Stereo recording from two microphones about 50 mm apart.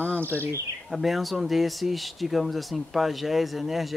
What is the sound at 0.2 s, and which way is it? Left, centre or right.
Speech, right.